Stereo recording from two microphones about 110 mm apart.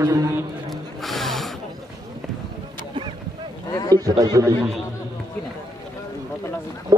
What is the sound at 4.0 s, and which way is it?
Speech, 30° right (ahead or behind).